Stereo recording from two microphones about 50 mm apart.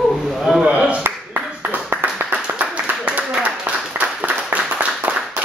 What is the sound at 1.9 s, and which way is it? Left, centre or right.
Clapping, right.